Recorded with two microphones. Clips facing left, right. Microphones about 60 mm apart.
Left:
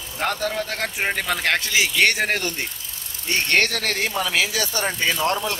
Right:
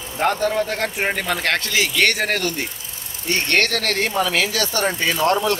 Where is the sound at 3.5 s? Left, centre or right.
Centre.